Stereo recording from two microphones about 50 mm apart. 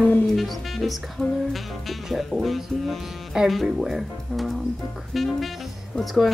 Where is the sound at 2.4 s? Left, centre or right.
Centre.